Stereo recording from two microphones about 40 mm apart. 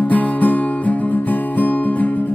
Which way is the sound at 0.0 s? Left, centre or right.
Left.